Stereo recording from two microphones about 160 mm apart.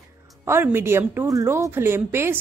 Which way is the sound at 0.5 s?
15° right (ahead or behind).